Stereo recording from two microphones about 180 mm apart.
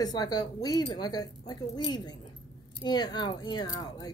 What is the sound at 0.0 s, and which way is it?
Speech, 20° left (ahead or behind).